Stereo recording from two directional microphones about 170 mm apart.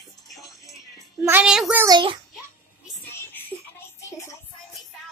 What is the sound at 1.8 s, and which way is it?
Speech, 25° right (ahead or behind).